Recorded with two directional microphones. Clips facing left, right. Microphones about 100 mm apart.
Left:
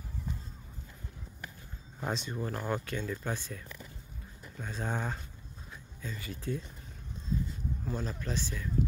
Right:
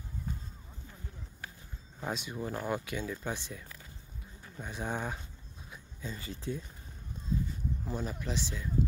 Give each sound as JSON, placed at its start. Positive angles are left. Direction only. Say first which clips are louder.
{"t": 2.0, "sound": "speech", "louder": "left 1 dB", "side_deg": -5}
{"t": 6.0, "sound": "speech", "louder": "even", "side_deg": -30}
{"t": 7.8, "sound": "speech", "louder": "left 1 dB", "side_deg": -15}